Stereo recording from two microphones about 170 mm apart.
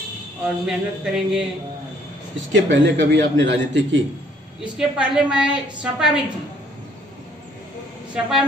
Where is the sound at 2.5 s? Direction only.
90° right.